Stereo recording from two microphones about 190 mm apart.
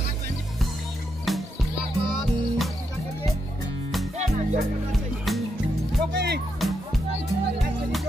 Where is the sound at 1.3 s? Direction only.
Centre (ahead or behind).